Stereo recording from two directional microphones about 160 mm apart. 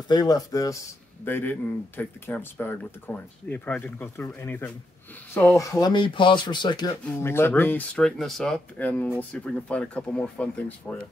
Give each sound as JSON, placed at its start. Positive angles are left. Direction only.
{"t": 0.1, "sound": "speech", "side_deg": 25}
{"t": 7.1, "sound": "speech", "side_deg": 15}